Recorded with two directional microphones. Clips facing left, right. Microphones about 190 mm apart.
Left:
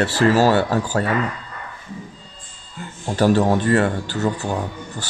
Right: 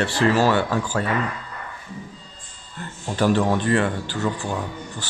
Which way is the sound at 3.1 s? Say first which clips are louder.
Left 3 dB; 40° left (ahead or behind).